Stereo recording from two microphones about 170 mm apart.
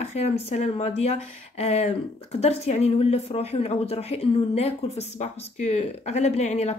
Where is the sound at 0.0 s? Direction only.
40° left (ahead or behind).